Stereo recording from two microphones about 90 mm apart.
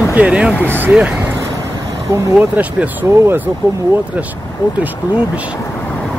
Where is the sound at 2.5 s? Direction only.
15° right (ahead or behind).